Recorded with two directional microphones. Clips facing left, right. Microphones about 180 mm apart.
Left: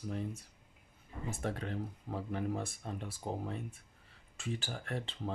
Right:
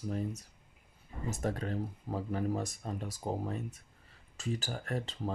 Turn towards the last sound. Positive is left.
turn(degrees=-40)  # may be behind; listen again after turning